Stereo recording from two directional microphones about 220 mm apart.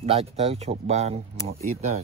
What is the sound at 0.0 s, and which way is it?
Speech, 25° right (ahead or behind).